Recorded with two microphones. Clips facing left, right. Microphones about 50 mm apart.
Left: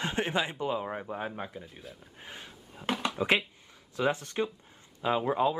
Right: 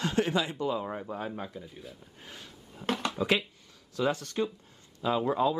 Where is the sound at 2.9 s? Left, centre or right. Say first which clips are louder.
Even; centre.